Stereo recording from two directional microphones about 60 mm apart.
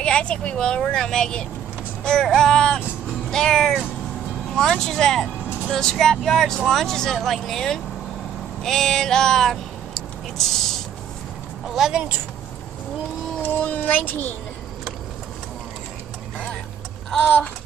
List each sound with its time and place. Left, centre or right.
0.0 s a woman's voice: centre
4.7 s a woman's voice: centre
11.6 s speech: centre
13.6 s speech: left